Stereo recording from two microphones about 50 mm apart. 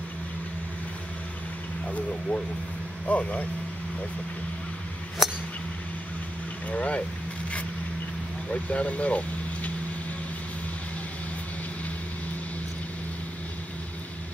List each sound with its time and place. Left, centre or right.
1.9 s speech: left
5.2 s a sound: centre
6.7 s speech: left
8.5 s speech: left